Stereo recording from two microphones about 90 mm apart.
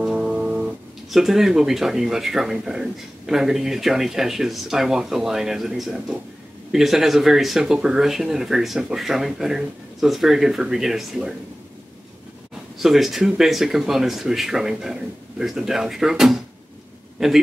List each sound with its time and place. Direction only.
0.0 s music: 10° right (ahead or behind)
1.1 s speech: 5° right (ahead or behind)
12.7 s speech: centre (ahead or behind)